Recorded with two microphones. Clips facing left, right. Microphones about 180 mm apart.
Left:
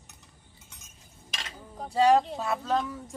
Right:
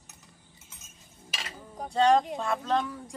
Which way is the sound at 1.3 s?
5° right (ahead or behind).